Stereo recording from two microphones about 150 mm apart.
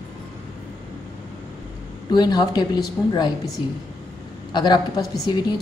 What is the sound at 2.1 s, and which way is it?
A woman's voice, 30° left (ahead or behind).